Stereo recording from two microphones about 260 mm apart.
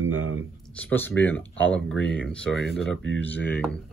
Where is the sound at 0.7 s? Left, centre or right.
Centre.